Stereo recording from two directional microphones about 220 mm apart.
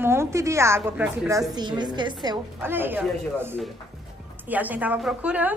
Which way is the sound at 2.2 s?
10° right (ahead or behind).